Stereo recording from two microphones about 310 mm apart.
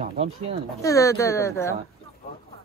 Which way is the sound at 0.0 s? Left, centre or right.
Centre.